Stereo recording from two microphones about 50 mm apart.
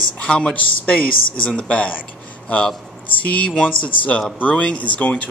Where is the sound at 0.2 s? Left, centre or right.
Left.